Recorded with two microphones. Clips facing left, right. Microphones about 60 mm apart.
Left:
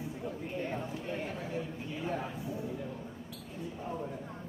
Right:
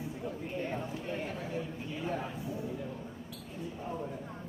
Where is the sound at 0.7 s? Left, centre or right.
Centre.